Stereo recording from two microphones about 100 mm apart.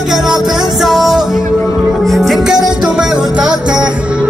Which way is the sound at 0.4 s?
Centre (ahead or behind).